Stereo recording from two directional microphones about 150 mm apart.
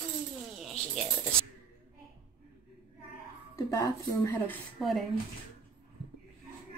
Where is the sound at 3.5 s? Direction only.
20° left (ahead or behind).